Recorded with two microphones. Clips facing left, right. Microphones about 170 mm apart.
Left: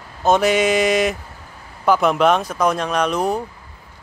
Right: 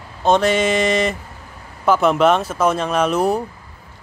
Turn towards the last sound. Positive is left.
turn(degrees=-5)  # may be behind; listen again after turning